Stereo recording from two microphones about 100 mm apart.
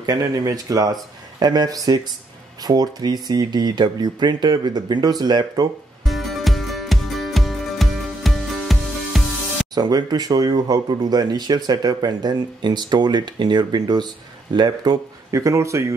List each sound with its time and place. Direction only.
0.0 s speech: 40° right (ahead or behind)
6.0 s music: centre (ahead or behind)
9.8 s speech: 40° right (ahead or behind)